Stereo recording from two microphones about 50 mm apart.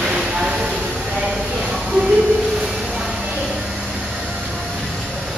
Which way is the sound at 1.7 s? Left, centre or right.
Centre.